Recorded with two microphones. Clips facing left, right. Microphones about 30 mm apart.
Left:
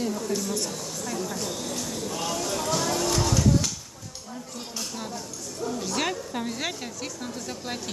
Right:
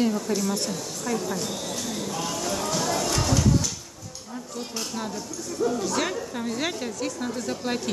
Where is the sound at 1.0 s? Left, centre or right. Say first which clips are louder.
Right 4 dB; centre.